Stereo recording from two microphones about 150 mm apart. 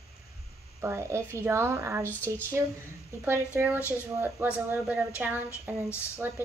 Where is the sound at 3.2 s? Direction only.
15° right (ahead or behind).